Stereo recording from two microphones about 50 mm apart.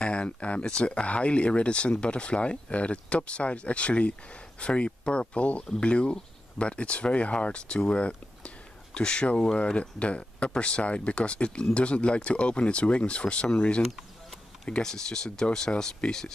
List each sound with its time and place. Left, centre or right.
0.0 s speech: left
14.7 s speech: centre